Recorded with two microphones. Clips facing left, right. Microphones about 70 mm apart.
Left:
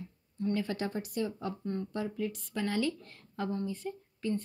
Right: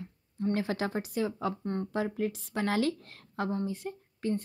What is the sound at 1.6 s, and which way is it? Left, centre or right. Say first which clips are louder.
Speech: right 2 dB; right.